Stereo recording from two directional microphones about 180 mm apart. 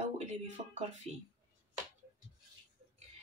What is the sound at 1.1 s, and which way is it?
Speech, centre (ahead or behind).